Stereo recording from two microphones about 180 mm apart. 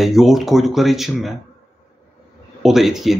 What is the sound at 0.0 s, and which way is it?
A man's voice, centre (ahead or behind).